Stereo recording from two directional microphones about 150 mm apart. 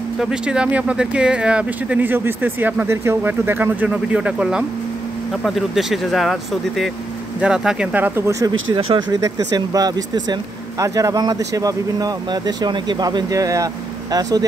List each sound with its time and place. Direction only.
0.2 s speech: 5° right (ahead or behind)
8.4 s speech: 30° right (ahead or behind)